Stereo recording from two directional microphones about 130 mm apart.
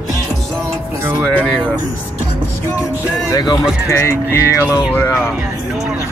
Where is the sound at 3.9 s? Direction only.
20° left (ahead or behind).